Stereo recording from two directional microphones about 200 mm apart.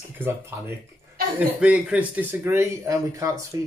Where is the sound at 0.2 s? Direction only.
10° right (ahead or behind).